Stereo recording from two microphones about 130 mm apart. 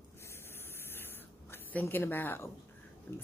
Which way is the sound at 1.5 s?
15° left (ahead or behind).